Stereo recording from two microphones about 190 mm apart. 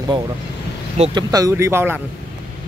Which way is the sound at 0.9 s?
35° right (ahead or behind).